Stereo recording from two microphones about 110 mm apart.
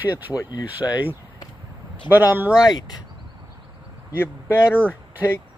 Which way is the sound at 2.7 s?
40° left (ahead or behind).